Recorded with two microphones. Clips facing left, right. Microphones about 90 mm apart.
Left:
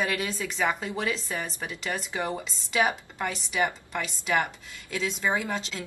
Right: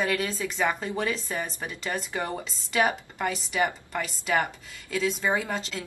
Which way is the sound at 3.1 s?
5° right (ahead or behind).